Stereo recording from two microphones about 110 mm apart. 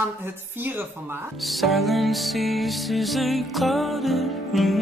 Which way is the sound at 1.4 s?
Centre (ahead or behind).